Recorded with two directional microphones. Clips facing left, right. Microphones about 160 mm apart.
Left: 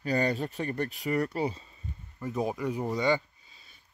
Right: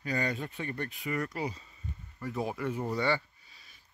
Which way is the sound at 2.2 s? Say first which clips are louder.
Left 3 dB; 20° left (ahead or behind).